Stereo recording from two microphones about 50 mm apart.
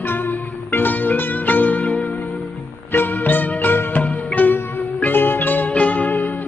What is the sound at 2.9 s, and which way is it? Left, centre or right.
Music, left.